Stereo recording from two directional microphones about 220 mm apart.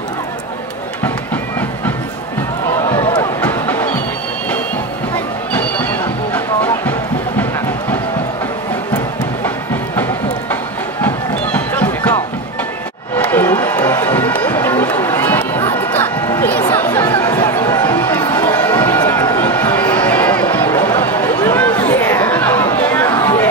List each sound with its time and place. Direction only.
3.3 s music: 10° left (ahead or behind)
5.1 s music: 5° left (ahead or behind)
10.5 s music: 10° left (ahead or behind)
13.2 s music: 10° left (ahead or behind)
16.3 s chatter: 10° left (ahead or behind)